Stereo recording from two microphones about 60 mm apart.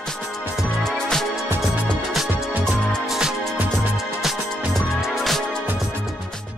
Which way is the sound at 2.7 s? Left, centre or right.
Centre.